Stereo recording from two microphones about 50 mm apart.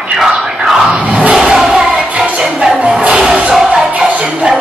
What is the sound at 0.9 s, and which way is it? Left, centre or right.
Crowd, right.